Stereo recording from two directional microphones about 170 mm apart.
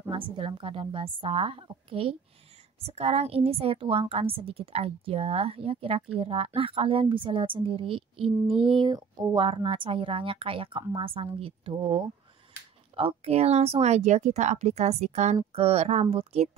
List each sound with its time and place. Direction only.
0.1 s a woman's voice: 30° right (ahead or behind)